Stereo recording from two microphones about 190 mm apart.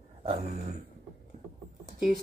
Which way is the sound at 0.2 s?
35° right (ahead or behind).